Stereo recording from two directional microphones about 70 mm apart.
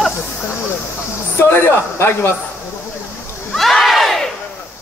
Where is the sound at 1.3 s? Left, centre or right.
Left.